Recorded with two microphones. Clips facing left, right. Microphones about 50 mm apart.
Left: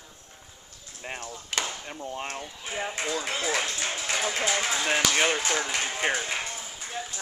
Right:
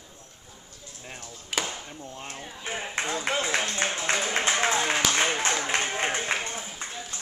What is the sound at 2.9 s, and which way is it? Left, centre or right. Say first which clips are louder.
Speech: right 6 dB; right.